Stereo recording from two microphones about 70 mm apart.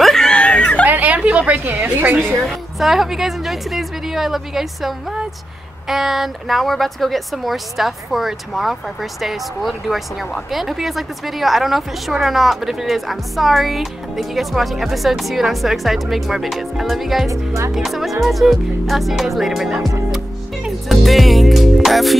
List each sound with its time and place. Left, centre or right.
0.0 s a sound: centre
0.8 s a sound: right
1.6 s a woman's voice: right
2.4 s a woman's voice: centre
17.3 s speech: right
17.7 s a woman's voice: centre
20.6 s music: centre